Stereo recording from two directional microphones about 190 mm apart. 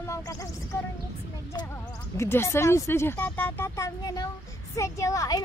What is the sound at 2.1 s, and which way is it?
A child's voice, 15° left (ahead or behind).